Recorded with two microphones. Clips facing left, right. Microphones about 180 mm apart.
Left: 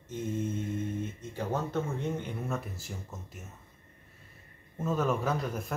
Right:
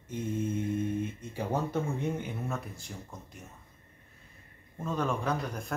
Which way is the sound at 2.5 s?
Centre (ahead or behind).